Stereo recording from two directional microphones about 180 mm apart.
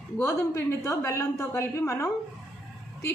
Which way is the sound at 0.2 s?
15° left (ahead or behind).